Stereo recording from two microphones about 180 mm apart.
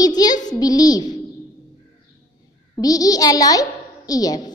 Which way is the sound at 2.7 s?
20° left (ahead or behind).